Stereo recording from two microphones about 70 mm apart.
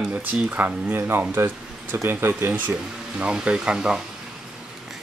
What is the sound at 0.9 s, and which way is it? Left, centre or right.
Speech, right.